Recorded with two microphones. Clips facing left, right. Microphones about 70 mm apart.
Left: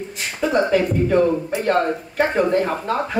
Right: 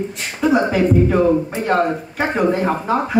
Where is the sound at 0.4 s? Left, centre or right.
Centre.